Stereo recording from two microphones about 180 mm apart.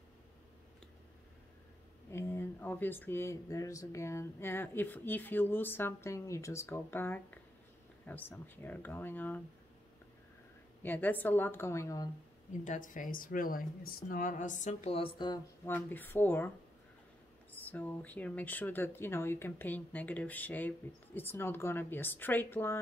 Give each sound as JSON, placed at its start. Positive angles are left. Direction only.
{"t": 2.0, "sound": "speech", "side_deg": 15}
{"t": 10.8, "sound": "speech", "side_deg": 10}
{"t": 12.6, "sound": "speech", "side_deg": 45}
{"t": 15.6, "sound": "speech", "side_deg": 10}
{"t": 17.5, "sound": "speech", "side_deg": 10}